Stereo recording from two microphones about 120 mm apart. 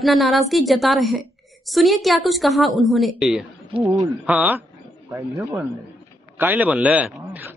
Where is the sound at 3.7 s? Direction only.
45° right (ahead or behind).